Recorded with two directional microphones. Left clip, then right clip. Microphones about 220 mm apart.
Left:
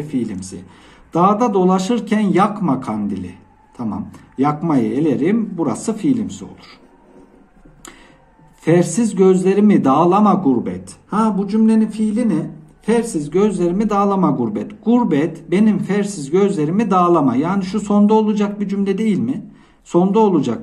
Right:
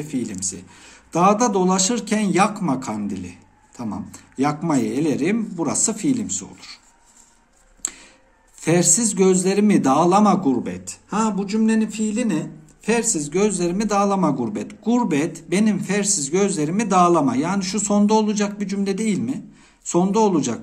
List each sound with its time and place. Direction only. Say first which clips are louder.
0.0 s a man's voice: left 3 dB; 30° right (ahead or behind)
8.6 s a man's voice: left 3 dB; 35° right (ahead or behind)
13.2 s a man's voice: left 4 dB; 35° right (ahead or behind)